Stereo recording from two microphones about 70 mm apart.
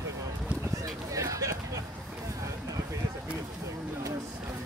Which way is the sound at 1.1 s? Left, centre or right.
Right.